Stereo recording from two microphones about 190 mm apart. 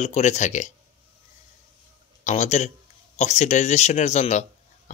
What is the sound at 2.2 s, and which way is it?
Speech, 40° left (ahead or behind).